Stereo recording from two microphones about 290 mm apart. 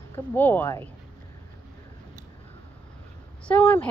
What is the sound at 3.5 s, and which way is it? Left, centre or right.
Speech, centre.